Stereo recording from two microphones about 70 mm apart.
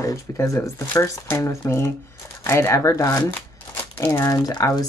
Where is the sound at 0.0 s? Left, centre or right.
Left.